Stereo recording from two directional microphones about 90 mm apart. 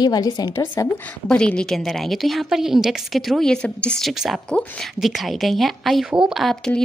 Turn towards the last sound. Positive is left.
turn(degrees=5)  # may be behind; listen again after turning